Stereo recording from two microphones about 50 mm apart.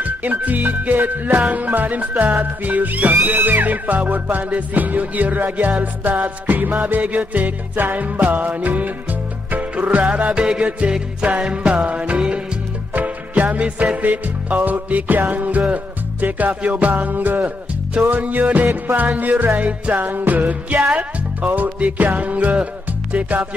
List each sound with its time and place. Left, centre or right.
0.0 s speech: right
0.8 s music: right